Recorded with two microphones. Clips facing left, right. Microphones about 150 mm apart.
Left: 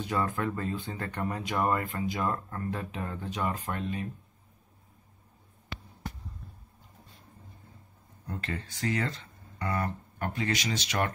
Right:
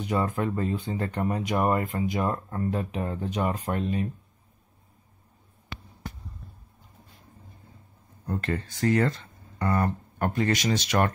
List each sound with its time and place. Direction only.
0.1 s speech: 20° right (ahead or behind)
8.3 s speech: 50° right (ahead or behind)